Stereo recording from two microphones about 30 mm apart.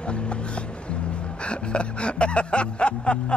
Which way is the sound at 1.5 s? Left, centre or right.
Left.